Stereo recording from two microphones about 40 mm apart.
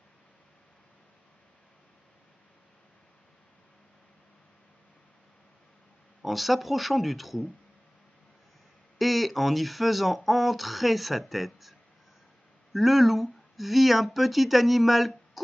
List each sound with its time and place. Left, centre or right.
6.2 s speech: centre
8.9 s speech: centre
12.7 s speech: centre